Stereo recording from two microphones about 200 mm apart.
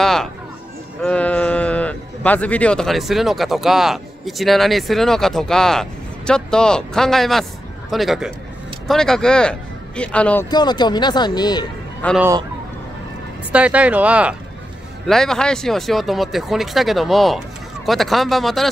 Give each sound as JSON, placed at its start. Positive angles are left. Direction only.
{"t": 0.0, "sound": "music", "side_deg": 0}
{"t": 1.0, "sound": "speech", "side_deg": 5}
{"t": 10.5, "sound": "speech", "side_deg": 20}
{"t": 12.2, "sound": "speech", "side_deg": -15}
{"t": 13.5, "sound": "speech", "side_deg": -5}